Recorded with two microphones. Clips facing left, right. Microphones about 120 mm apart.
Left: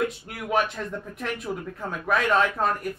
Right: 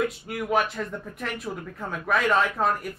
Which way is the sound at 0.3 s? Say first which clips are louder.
Right 1 dB; centre (ahead or behind).